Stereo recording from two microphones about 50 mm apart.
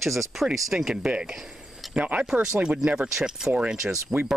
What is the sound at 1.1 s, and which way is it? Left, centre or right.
Speech, centre.